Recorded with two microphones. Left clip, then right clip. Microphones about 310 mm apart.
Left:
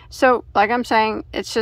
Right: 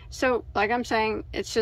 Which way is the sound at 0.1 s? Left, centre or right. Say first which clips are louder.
Left 9 dB; centre.